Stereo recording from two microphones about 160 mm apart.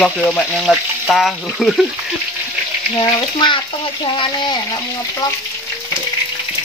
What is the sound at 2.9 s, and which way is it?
Speech, 25° left (ahead or behind).